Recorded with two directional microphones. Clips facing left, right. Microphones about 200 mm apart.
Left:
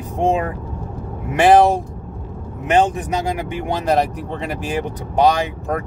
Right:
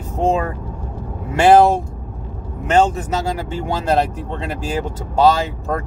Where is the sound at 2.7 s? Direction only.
15° left (ahead or behind).